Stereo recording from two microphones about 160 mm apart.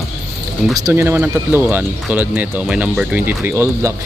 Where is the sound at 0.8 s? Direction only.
15° right (ahead or behind).